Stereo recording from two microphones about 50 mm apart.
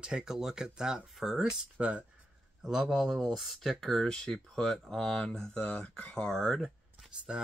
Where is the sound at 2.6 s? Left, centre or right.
Centre.